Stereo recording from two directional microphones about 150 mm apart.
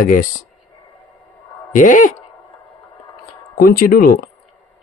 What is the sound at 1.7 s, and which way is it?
Speech, 60° left (ahead or behind).